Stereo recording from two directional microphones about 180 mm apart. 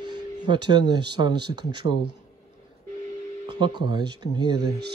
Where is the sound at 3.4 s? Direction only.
25° right (ahead or behind).